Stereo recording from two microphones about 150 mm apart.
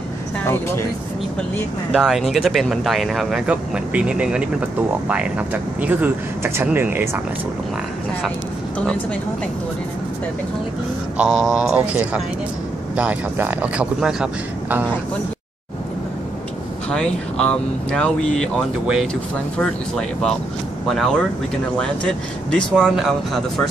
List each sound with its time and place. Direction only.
0.4 s speech: 15° left (ahead or behind)
2.0 s speech: centre (ahead or behind)
8.7 s a woman's voice: 10° left (ahead or behind)
11.2 s speech: centre (ahead or behind)
16.9 s speech: 5° left (ahead or behind)